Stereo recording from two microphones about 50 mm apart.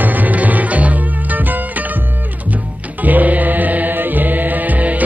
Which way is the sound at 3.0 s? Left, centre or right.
Right.